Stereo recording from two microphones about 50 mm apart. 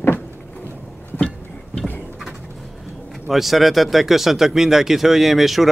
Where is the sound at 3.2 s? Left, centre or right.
Centre.